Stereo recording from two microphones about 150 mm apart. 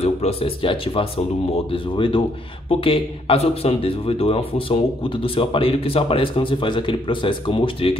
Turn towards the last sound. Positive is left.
turn(degrees=35)  # may be behind; listen again after turning